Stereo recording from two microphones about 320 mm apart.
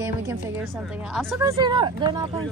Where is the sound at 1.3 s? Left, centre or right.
Centre.